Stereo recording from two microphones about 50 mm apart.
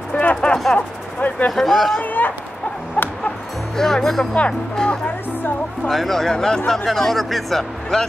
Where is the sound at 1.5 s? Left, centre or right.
Centre.